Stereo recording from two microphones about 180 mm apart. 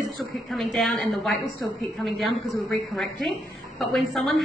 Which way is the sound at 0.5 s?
Centre (ahead or behind).